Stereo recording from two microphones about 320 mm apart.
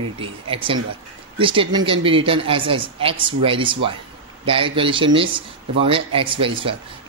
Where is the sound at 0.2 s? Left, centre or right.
Centre.